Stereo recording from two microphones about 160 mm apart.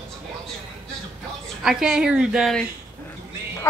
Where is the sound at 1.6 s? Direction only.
5° right (ahead or behind).